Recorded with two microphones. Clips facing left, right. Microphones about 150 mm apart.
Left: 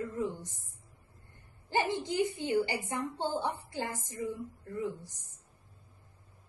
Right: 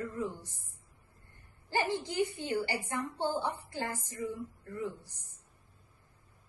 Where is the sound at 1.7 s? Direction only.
20° left (ahead or behind).